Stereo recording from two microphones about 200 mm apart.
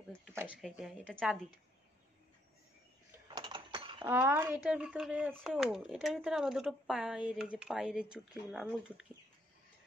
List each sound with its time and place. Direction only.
0.6 s speech: centre (ahead or behind)
3.3 s a sound: 20° right (ahead or behind)
4.1 s speech: 10° right (ahead or behind)